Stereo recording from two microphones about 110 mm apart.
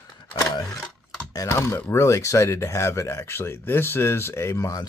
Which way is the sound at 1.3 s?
30° left (ahead or behind).